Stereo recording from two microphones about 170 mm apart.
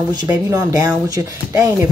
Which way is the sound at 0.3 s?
20° right (ahead or behind).